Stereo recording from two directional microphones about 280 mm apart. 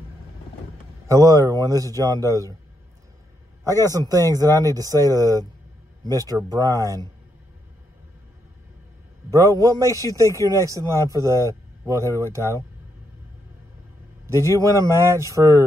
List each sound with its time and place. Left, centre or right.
1.0 s a man's voice: centre
3.6 s a man's voice: centre
9.3 s a man's voice: centre
14.2 s a man's voice: centre